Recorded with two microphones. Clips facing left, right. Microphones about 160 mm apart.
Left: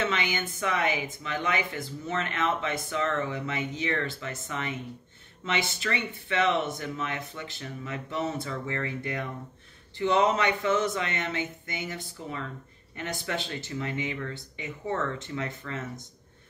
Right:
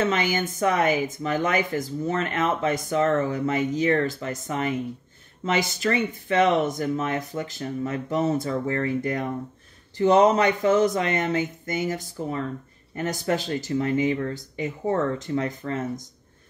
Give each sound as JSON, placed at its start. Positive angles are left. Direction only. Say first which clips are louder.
{"t": 0.0, "sound": "speech", "louder": "right 6 dB", "side_deg": -40}